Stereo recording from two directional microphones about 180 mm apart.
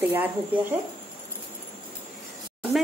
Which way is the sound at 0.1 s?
10° right (ahead or behind).